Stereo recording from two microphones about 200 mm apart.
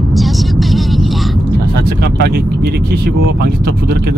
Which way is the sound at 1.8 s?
50° right (ahead or behind).